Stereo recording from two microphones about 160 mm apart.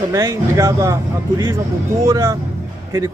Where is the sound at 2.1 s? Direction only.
20° right (ahead or behind).